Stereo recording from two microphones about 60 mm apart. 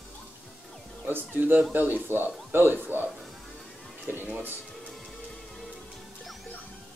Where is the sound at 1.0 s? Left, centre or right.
Right.